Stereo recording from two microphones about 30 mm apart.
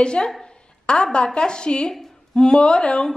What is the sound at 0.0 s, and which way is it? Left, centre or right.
A woman's voice, left.